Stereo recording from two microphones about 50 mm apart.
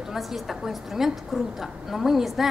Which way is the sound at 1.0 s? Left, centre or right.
Centre.